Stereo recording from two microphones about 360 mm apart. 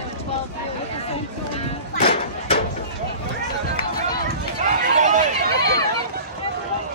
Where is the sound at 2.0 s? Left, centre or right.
Left.